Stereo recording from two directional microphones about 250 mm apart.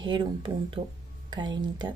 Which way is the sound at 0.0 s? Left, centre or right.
Centre.